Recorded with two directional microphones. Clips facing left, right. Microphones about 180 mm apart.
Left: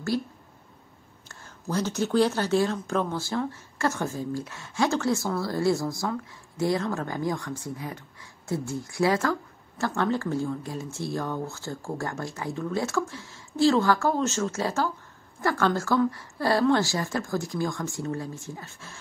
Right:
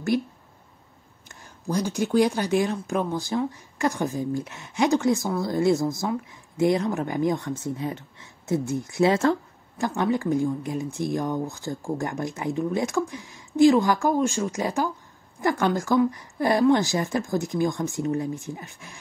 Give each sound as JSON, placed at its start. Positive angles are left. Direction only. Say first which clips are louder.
{"t": 0.1, "sound": "speech", "louder": "right 3 dB", "side_deg": -20}
{"t": 1.3, "sound": "speech", "louder": "right 2 dB", "side_deg": -15}